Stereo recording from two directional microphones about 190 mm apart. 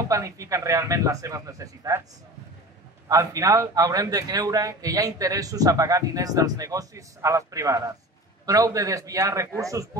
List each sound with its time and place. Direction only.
0.1 s a man's voice: 15° right (ahead or behind)
3.1 s a man's voice: 20° right (ahead or behind)